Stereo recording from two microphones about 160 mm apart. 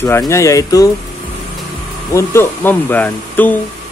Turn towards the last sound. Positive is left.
turn(degrees=10)  # may be behind; listen again after turning